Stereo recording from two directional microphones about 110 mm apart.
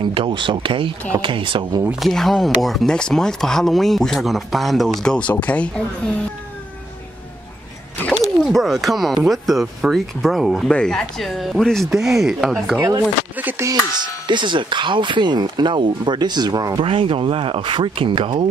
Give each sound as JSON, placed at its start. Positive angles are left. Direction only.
{"t": 0.0, "sound": "speech", "side_deg": -50}
{"t": 1.9, "sound": "speech", "side_deg": 0}
{"t": 8.5, "sound": "speech", "side_deg": 0}
{"t": 13.4, "sound": "music", "side_deg": -15}
{"t": 13.7, "sound": "speech", "side_deg": -45}
{"t": 16.8, "sound": "speech", "side_deg": -55}